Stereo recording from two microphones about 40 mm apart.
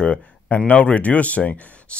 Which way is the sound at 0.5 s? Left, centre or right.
Left.